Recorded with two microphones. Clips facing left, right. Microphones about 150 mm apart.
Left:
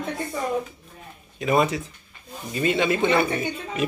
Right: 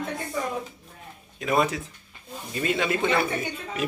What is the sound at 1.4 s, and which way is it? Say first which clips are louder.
A man's voice: left 3 dB; centre (ahead or behind).